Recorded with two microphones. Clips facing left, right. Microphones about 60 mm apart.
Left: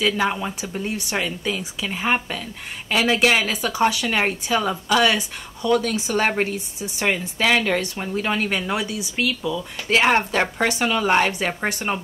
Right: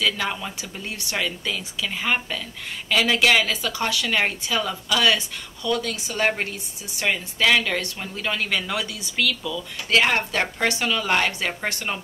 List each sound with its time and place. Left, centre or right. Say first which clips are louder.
0.0 s speech: left 4 dB; left